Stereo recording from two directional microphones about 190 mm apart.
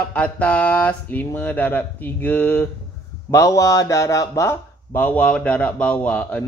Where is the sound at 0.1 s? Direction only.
5° left (ahead or behind).